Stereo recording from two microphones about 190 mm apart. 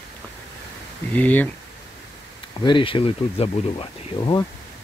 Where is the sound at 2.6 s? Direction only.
25° left (ahead or behind).